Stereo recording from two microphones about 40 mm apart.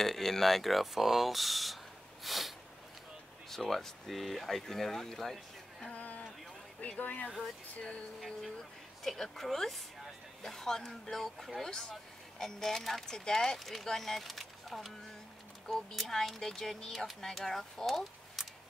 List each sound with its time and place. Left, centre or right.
0.0 s speech: centre
2.2 s snort: centre
3.4 s speech: centre
6.8 s speech: left
9.0 s speech: centre